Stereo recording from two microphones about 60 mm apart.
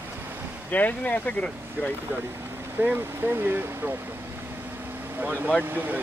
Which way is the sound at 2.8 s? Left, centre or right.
Right.